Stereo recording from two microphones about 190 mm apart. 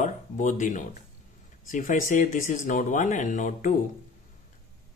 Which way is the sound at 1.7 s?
45° left (ahead or behind).